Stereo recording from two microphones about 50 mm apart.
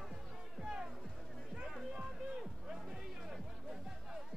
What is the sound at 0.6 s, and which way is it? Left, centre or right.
Music, centre.